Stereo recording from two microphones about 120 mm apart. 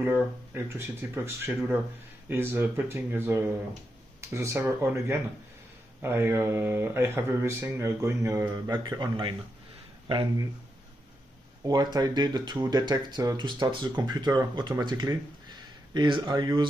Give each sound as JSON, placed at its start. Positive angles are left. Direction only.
{"t": 0.6, "sound": "speech", "side_deg": -20}
{"t": 8.6, "sound": "speech", "side_deg": -35}
{"t": 11.6, "sound": "speech", "side_deg": -35}